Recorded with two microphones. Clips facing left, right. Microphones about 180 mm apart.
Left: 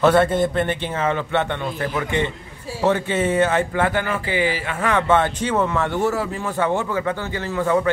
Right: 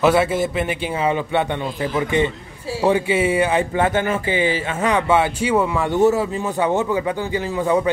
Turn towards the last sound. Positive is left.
turn(degrees=-15)  # may be behind; listen again after turning